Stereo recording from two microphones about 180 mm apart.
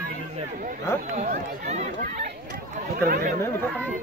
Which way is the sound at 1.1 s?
40° right (ahead or behind).